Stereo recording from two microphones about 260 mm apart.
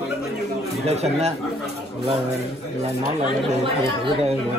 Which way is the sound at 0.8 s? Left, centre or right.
Right.